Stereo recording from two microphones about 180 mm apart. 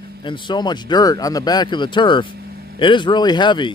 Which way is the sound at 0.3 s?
25° left (ahead or behind).